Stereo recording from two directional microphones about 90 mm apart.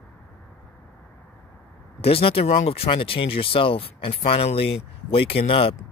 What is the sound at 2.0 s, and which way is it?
Speech, 90° left.